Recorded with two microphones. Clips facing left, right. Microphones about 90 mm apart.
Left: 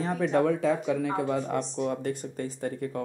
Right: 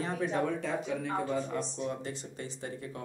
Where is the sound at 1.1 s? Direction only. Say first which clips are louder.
Left 4 dB; 90° left; by 3.0 s 50° left (ahead or behind).